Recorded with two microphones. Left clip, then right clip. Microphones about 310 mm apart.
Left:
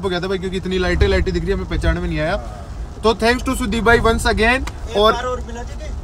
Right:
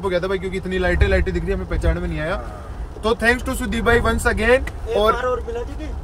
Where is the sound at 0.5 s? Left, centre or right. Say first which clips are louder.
Left 1 dB; centre.